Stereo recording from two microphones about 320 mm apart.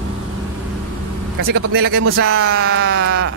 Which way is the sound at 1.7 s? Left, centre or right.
Right.